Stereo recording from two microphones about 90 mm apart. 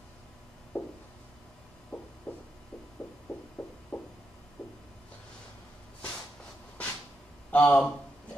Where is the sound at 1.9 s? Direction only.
10° left (ahead or behind).